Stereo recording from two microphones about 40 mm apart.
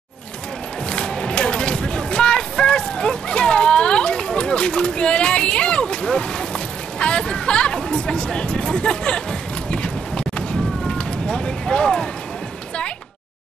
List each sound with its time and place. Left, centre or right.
0.8 s music: left
7.0 s a sound: left
11.0 s speech: left